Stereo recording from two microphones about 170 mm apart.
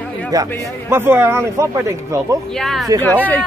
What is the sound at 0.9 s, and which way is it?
Speech, 15° right (ahead or behind).